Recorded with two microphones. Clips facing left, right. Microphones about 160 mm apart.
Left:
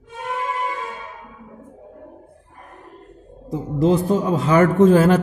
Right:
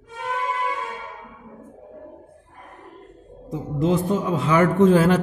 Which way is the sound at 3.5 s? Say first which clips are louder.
Left 4 dB; 35° left (ahead or behind).